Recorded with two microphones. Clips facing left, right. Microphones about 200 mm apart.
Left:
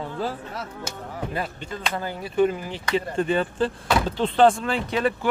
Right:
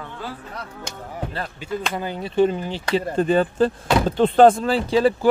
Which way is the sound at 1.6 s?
15° right (ahead or behind).